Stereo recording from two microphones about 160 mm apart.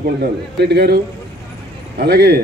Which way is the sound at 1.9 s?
80° right.